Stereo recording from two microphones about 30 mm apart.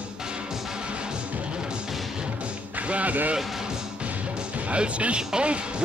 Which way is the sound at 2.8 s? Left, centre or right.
Right.